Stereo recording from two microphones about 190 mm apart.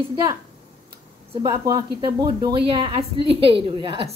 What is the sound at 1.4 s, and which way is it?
A woman's voice, 20° right (ahead or behind).